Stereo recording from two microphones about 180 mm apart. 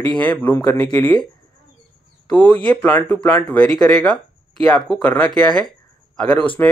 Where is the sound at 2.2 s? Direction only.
5° left (ahead or behind).